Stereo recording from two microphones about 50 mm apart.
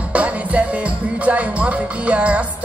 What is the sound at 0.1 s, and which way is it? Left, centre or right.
Music, right.